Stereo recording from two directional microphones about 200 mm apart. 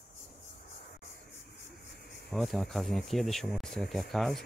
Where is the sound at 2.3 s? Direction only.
Centre (ahead or behind).